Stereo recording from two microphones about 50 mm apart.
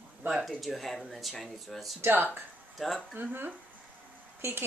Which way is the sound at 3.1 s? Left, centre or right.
Right.